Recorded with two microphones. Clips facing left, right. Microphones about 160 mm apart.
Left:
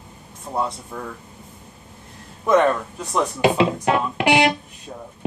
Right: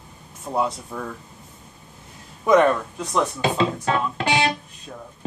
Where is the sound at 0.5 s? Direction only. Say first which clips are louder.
Right 1 dB; 5° right (ahead or behind).